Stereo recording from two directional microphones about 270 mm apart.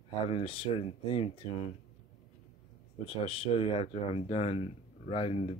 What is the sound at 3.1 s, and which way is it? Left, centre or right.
Speech, left.